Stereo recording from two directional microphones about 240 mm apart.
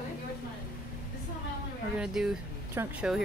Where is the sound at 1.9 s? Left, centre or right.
Centre.